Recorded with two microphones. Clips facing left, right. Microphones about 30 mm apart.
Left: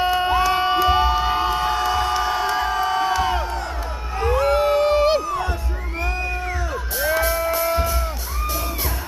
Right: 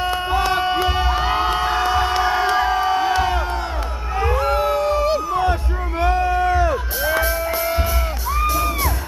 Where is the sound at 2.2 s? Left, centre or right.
Right.